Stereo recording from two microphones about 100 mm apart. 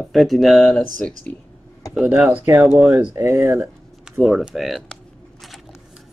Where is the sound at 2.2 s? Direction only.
20° right (ahead or behind).